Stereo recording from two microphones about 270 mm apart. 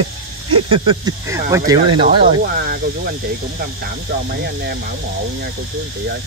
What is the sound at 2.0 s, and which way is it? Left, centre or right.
Speech, right.